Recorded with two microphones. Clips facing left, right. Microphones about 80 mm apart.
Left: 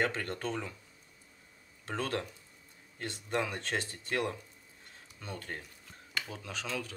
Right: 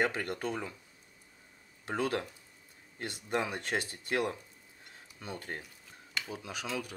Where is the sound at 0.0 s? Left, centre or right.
Centre.